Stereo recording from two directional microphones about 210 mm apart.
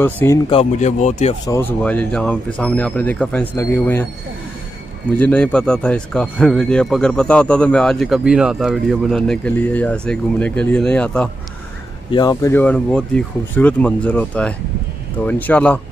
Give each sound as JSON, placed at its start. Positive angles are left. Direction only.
{"t": 0.0, "sound": "speech", "side_deg": 10}
{"t": 0.5, "sound": "speech", "side_deg": 30}
{"t": 1.5, "sound": "speech", "side_deg": 10}
{"t": 5.2, "sound": "speech", "side_deg": 5}
{"t": 12.1, "sound": "speech", "side_deg": 20}